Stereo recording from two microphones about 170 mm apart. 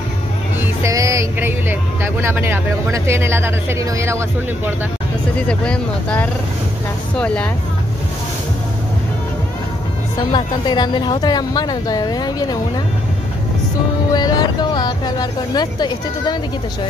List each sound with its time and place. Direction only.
0.6 s music: 20° right (ahead or behind)
2.2 s speech: 15° right (ahead or behind)
5.5 s speech: 5° left (ahead or behind)
10.3 s speech: 25° left (ahead or behind)
14.1 s speech: 25° left (ahead or behind)